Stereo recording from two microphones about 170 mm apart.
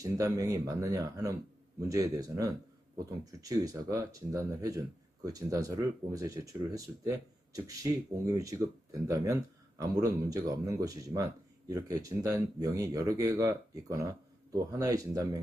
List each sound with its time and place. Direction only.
0.0 s speech: 20° right (ahead or behind)